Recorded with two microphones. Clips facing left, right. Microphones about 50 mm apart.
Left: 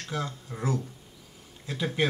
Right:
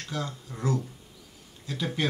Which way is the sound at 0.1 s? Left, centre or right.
Centre.